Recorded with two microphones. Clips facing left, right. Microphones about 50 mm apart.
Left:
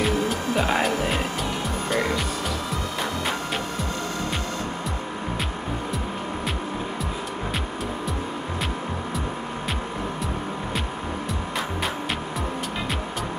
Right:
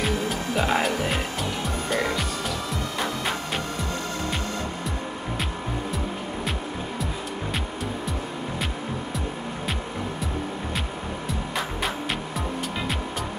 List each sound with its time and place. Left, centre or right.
0.0 s music: centre